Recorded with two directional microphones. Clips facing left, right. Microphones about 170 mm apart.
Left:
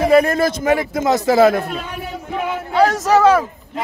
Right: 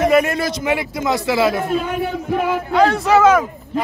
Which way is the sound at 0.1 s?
35° left (ahead or behind).